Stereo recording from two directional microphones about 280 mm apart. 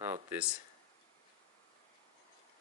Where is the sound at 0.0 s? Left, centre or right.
Centre.